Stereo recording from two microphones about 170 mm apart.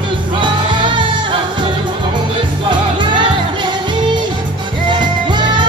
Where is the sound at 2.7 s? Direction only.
25° right (ahead or behind).